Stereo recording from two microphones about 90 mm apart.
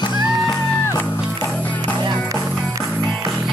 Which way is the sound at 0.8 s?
25° left (ahead or behind).